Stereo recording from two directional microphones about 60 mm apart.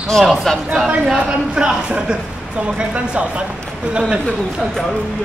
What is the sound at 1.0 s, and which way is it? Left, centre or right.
Speech, centre.